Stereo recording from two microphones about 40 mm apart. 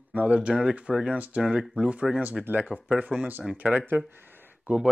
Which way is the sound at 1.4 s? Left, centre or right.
Centre.